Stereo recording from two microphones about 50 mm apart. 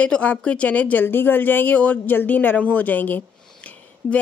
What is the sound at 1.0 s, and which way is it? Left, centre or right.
Speech, left.